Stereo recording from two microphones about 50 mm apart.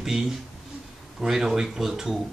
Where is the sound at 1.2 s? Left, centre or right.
Centre.